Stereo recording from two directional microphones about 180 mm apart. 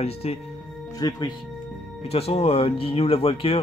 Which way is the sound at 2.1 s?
35° left (ahead or behind).